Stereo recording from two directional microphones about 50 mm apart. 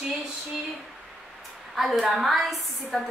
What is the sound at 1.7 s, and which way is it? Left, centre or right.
A woman's voice, centre.